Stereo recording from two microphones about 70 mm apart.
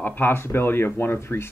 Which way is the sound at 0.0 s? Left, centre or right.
Left.